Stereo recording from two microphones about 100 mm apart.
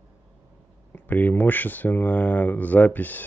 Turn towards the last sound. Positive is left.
turn(degrees=15)  # may be behind; listen again after turning